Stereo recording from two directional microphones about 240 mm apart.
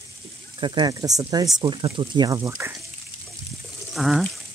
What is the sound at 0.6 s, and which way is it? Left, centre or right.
Speech, centre.